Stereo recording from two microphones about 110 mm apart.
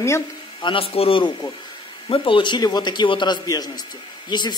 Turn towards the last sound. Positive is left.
turn(degrees=40)  # may be behind; listen again after turning